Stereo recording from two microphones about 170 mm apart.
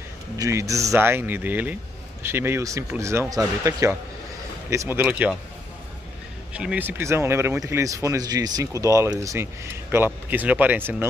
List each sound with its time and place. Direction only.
0.4 s speech: 15° right (ahead or behind)
6.5 s speech: 5° right (ahead or behind)